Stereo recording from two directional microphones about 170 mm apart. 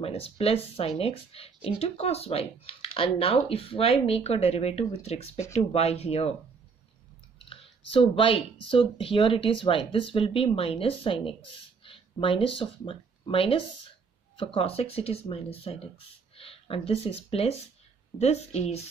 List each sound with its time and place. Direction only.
0.0 s speech: 35° left (ahead or behind)
7.3 s speech: 30° left (ahead or behind)